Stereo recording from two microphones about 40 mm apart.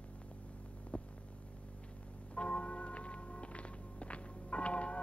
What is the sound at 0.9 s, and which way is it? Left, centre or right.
Hum, left.